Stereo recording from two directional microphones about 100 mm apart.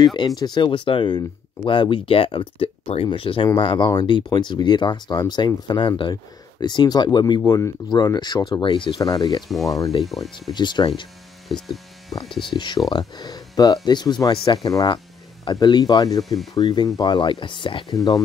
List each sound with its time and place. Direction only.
0.0 s speech: 50° left (ahead or behind); by 3.1 s 75° left (ahead or behind)
3.1 s speech: 60° left (ahead or behind)
3.5 s speech: 50° left (ahead or behind)
9.0 s speech: 45° left (ahead or behind)
10.0 s speech: centre (ahead or behind)
10.5 s speech: 50° left (ahead or behind)
11.4 s speech: centre (ahead or behind)
12.5 s speech: 45° left (ahead or behind)
17.9 s speech: 35° left (ahead or behind)